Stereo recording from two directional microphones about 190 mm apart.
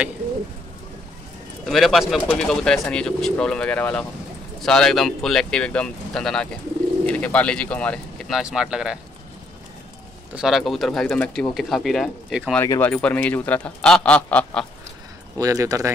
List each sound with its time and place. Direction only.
1.7 s speech: centre (ahead or behind)
10.3 s speech: centre (ahead or behind)
12.5 s speech: 10° left (ahead or behind)
15.3 s speech: 15° right (ahead or behind)